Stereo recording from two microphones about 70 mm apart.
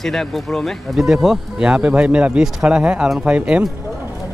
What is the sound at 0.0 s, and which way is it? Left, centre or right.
Speech, centre.